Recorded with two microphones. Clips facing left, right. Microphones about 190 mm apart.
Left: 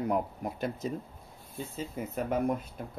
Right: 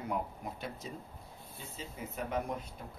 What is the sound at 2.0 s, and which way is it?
Speech, 55° left (ahead or behind).